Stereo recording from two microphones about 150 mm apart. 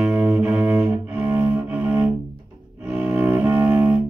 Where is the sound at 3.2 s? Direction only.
15° right (ahead or behind).